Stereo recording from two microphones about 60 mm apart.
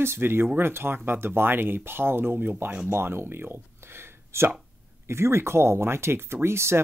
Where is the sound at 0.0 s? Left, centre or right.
Right.